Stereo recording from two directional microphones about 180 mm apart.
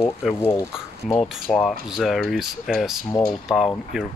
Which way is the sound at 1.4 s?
5° left (ahead or behind).